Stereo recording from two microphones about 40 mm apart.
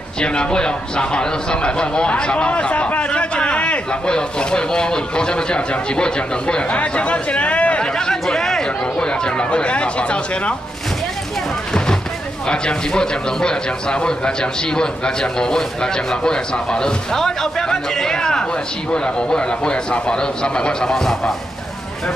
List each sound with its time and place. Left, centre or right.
0.2 s a man's voice: left
7.9 s chatter: centre
11.7 s a sound: centre
12.4 s a man's voice: left
21.0 s speech: centre